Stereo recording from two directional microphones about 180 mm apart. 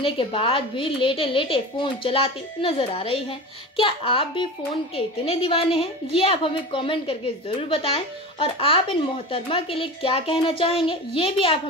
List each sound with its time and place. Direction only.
0.0 s a woman's voice: 30° left (ahead or behind)